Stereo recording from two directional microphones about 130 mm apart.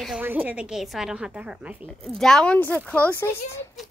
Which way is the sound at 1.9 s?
5° left (ahead or behind).